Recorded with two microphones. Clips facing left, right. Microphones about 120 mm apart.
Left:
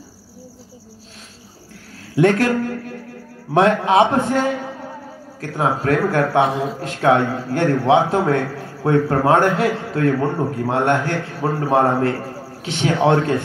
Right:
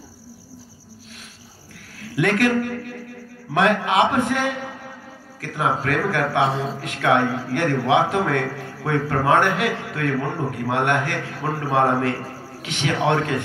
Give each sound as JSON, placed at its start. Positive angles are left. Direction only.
{"t": 2.1, "sound": "a man's voice", "side_deg": 30}